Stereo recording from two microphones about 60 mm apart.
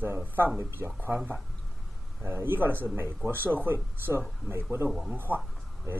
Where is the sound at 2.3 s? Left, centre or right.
Right.